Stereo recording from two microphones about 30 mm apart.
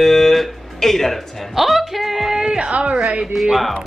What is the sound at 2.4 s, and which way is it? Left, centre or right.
Speech, right.